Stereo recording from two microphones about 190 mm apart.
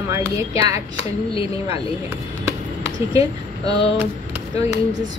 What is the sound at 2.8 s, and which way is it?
Speech, 20° right (ahead or behind).